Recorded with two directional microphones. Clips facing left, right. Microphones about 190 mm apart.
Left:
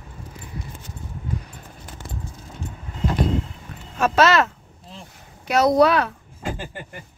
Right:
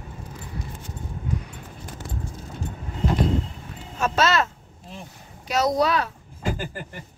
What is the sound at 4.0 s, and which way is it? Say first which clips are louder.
Speech: left 4 dB; 65° left (ahead or behind).